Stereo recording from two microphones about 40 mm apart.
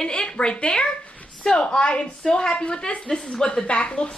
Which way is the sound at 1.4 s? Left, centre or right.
Centre.